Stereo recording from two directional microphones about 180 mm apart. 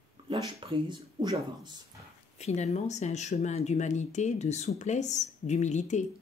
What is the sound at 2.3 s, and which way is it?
Speech, 40° left (ahead or behind).